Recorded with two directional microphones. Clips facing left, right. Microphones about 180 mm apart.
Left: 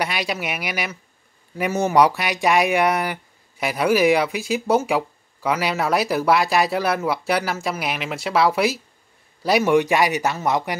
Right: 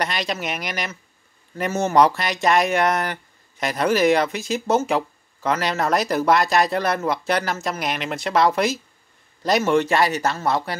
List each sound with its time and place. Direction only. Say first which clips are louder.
0.0 s speech: even; 10° left (ahead or behind)